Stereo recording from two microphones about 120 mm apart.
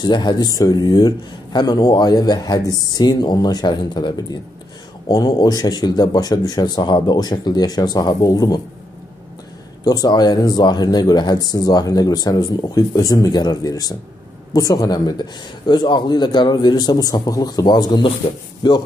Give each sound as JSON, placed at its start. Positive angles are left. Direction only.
{"t": 0.0, "sound": "speech", "side_deg": 40}
{"t": 9.8, "sound": "speech", "side_deg": 35}